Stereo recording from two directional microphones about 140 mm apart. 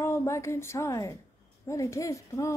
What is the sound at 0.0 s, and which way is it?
A woman's voice, 20° left (ahead or behind).